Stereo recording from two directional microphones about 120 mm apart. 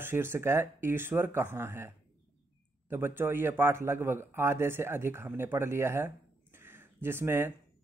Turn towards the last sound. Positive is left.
turn(degrees=-20)  # may be behind; listen again after turning